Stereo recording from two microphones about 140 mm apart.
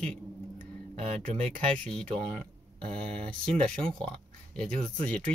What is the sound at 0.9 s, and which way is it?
Speech, 45° right (ahead or behind).